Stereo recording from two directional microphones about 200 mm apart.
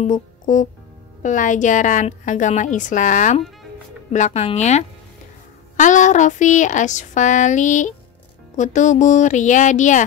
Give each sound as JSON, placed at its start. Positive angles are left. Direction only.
{"t": 0.0, "sound": "music", "side_deg": 40}
{"t": 1.2, "sound": "a woman's voice", "side_deg": 40}